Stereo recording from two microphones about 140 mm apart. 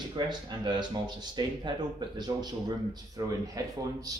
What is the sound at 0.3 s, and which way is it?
Speech, 30° right (ahead or behind).